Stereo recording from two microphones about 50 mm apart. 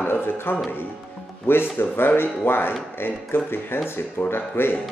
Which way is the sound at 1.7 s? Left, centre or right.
Left.